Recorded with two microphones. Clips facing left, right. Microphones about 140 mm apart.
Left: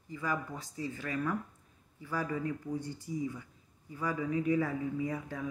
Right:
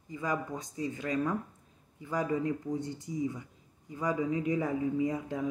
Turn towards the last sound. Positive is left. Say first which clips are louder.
# right 5 dB
turn(degrees=-20)  # may be behind; listen again after turning